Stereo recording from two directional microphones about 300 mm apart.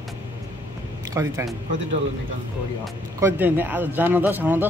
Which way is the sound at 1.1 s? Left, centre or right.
Centre.